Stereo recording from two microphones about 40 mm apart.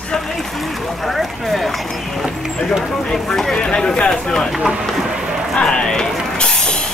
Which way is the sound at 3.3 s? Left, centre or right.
Centre.